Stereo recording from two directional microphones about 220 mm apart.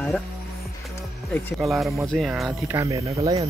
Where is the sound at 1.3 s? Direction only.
Centre (ahead or behind).